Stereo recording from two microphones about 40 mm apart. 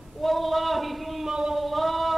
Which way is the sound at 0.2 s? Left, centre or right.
Centre.